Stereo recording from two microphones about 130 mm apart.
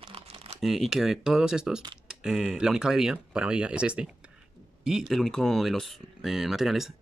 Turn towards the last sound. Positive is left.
turn(degrees=0)  # may be behind; listen again after turning